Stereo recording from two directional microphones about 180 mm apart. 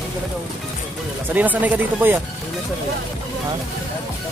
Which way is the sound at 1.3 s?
10° right (ahead or behind).